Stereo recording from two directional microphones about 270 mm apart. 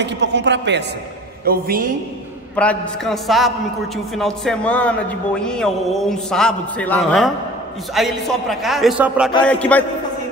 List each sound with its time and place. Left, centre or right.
0.0 s a man's voice: right
2.5 s a man's voice: centre